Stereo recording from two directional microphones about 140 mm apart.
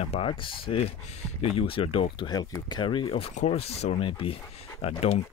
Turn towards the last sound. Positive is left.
turn(degrees=45)  # may be behind; listen again after turning